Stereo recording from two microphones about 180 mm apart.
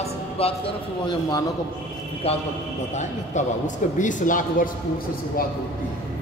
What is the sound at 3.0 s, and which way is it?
A man's voice, 45° left (ahead or behind).